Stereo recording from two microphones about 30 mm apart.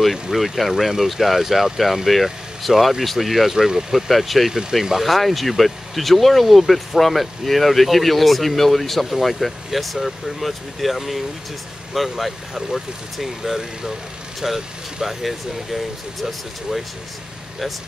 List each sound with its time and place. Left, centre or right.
0.0 s speech: centre
4.1 s speech: centre
4.5 s speech: centre
5.0 s speech: centre